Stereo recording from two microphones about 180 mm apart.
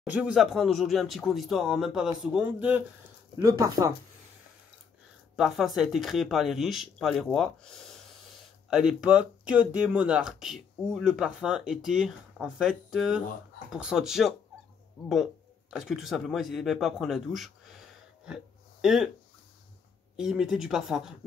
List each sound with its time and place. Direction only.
0.0 s speech: 5° right (ahead or behind)
3.3 s speech: 20° right (ahead or behind)
5.3 s speech: centre (ahead or behind)
15.7 s a man's voice: centre (ahead or behind)
20.2 s speech: 5° right (ahead or behind)